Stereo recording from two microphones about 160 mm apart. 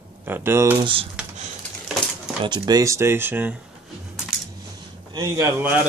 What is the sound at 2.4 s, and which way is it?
Speech, 25° right (ahead or behind).